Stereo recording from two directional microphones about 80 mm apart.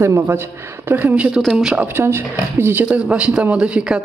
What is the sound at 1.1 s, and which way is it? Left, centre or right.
Speech, centre.